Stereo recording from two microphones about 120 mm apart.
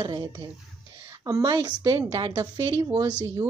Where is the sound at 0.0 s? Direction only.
40° right (ahead or behind).